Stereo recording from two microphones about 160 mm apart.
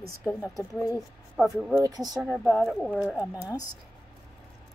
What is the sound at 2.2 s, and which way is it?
Speech, centre (ahead or behind).